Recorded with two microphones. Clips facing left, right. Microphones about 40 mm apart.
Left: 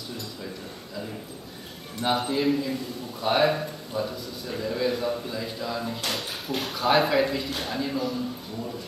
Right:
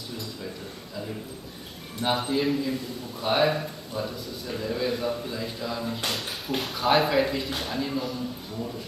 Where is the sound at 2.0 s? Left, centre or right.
Centre.